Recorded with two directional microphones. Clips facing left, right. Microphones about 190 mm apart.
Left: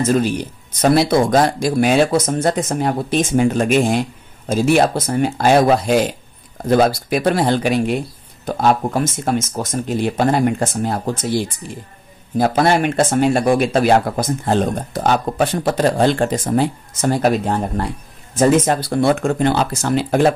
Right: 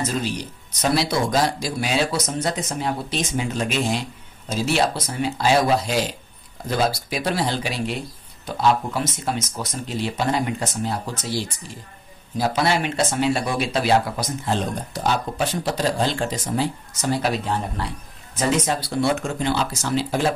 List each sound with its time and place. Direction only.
0.0 s speech: 50° left (ahead or behind)